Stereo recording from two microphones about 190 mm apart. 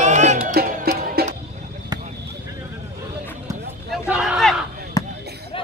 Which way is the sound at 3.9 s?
5° right (ahead or behind).